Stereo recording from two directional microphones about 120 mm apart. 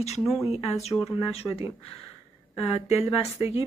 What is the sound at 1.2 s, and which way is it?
Speech, 55° left (ahead or behind).